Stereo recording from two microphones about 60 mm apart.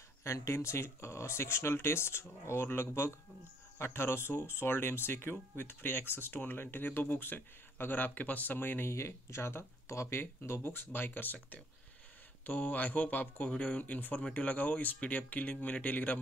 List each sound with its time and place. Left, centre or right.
0.2 s speech: left
8.9 s speech: left
12.4 s speech: left